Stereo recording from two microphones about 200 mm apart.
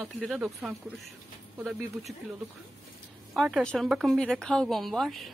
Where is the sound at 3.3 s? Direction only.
Centre (ahead or behind).